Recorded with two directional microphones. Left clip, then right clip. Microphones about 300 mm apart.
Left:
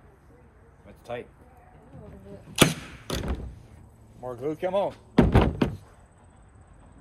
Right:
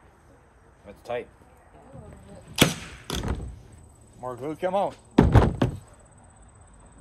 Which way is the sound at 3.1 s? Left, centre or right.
Centre.